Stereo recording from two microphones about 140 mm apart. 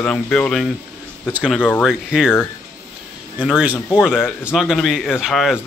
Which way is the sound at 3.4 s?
5° right (ahead or behind).